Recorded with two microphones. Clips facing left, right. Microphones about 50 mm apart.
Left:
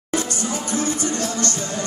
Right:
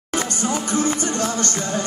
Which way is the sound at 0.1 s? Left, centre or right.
Right.